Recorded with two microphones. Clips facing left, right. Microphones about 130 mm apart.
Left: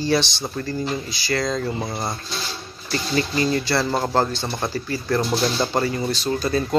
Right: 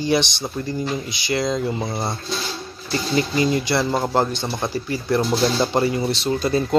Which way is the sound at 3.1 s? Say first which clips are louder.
Right 2 dB; 20° right (ahead or behind).